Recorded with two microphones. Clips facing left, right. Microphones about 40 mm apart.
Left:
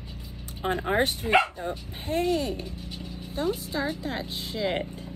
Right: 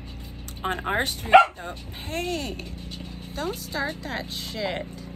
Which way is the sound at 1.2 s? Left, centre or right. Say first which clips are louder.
Right 12 dB; right.